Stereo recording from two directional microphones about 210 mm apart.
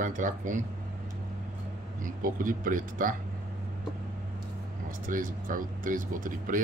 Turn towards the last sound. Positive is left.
turn(degrees=-40)  # may be behind; listen again after turning